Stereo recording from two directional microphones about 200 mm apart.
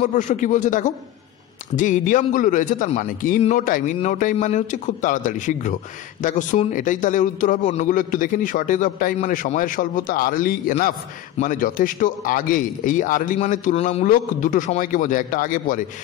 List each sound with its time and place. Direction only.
0.0 s a man's voice: 40° left (ahead or behind)